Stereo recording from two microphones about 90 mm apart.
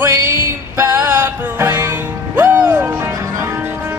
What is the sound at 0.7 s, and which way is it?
Music, 20° right (ahead or behind).